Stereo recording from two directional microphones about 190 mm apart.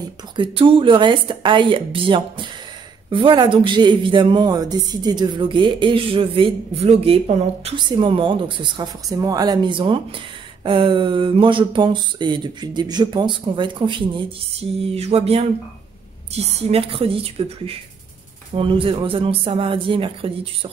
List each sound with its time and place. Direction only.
0.4 s speech: 25° right (ahead or behind)
16.7 s speech: 30° right (ahead or behind)